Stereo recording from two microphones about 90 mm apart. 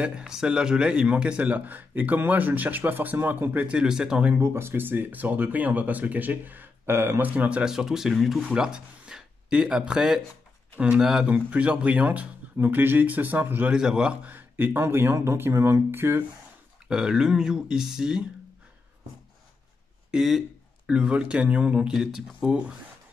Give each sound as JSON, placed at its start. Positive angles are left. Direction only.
{"t": 0.0, "sound": "speech", "side_deg": -10}
{"t": 4.4, "sound": "speech", "side_deg": -25}
{"t": 13.7, "sound": "speech", "side_deg": -10}
{"t": 14.3, "sound": "speech", "side_deg": -20}
{"t": 16.8, "sound": "speech", "side_deg": -10}
{"t": 20.1, "sound": "speech", "side_deg": -5}